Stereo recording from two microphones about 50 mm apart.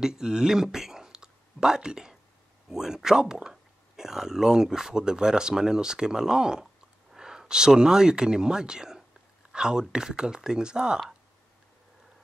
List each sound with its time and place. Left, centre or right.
0.0 s speech: centre